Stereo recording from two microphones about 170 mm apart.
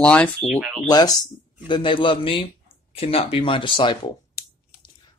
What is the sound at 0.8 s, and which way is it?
Speech, 25° left (ahead or behind).